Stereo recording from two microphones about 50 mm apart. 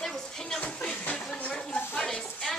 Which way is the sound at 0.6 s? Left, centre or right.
Left.